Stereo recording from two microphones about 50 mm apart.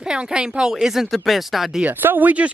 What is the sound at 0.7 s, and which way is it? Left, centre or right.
Speech, centre.